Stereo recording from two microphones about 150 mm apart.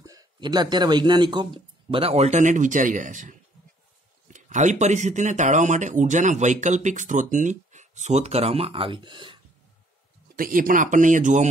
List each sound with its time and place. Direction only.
0.0 s speech: 25° right (ahead or behind)
10.3 s speech: 70° right (ahead or behind)